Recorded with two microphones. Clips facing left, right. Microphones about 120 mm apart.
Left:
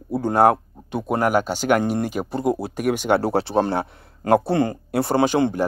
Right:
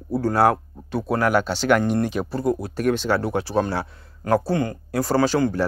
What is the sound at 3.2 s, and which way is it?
Speech, 30° left (ahead or behind).